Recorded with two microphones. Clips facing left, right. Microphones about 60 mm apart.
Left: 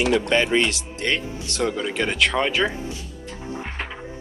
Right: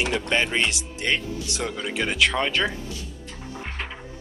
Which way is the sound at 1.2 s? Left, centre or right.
Left.